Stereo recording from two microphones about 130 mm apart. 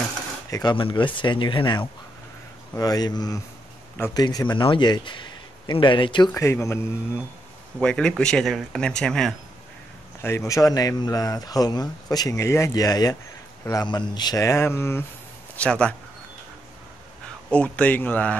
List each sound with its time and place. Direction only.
0.5 s speech: 35° left (ahead or behind)
6.3 s speech: 20° left (ahead or behind)
7.8 s speech: 5° left (ahead or behind)
10.2 s speech: 20° left (ahead or behind)
15.5 s speech: 10° left (ahead or behind)
17.5 s speech: 10° left (ahead or behind)